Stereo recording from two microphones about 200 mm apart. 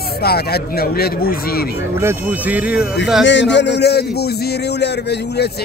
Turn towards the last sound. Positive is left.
turn(degrees=55)  # may be behind; listen again after turning